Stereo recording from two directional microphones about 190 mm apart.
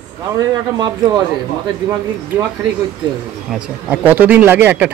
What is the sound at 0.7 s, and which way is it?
Speech, 20° right (ahead or behind).